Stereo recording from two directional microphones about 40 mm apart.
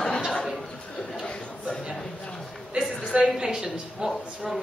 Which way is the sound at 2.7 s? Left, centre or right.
Centre.